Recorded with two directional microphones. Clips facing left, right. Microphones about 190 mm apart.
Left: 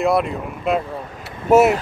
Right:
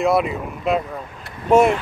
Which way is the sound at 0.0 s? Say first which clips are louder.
Even; centre (ahead or behind).